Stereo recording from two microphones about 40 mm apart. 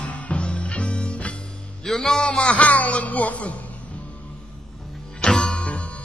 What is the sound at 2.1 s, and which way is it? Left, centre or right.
Music, left.